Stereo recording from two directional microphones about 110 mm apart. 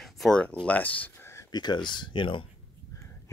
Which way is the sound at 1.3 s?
35° left (ahead or behind).